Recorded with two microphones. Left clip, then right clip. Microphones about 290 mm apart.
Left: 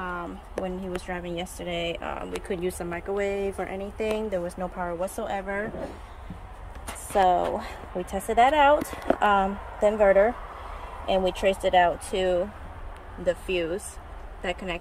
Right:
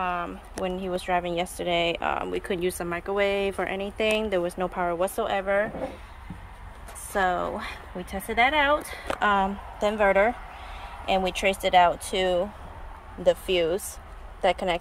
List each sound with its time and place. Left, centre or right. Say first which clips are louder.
0.0 s speech: right 5 dB; centre
5.2 s speech: right 5 dB; centre
7.2 s a woman's voice: left 4 dB; centre
11.5 s speech: right 4 dB; right
13.2 s speech: right 4 dB; right